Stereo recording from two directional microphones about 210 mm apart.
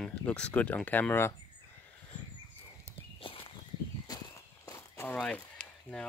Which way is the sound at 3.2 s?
25° left (ahead or behind).